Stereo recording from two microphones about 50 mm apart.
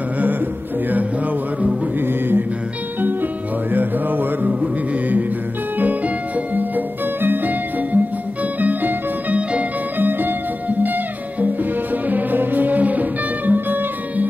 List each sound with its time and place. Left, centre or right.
2.0 s music: right
4.5 s music: right